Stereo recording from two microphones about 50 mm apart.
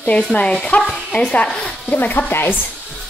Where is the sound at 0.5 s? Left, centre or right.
Centre.